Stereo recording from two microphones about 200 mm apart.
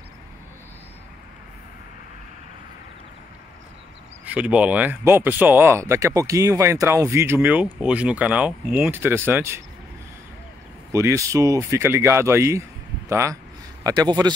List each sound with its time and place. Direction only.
4.3 s speech: 5° right (ahead or behind)
10.9 s speech: 15° right (ahead or behind)